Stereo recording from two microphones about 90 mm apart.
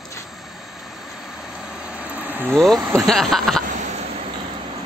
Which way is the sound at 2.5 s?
Centre (ahead or behind).